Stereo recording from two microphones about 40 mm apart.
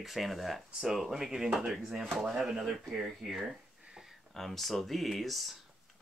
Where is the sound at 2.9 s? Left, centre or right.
Centre.